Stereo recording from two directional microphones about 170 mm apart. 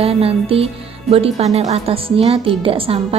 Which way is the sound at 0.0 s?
35° right (ahead or behind).